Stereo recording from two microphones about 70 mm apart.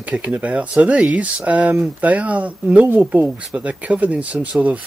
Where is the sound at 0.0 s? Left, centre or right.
Right.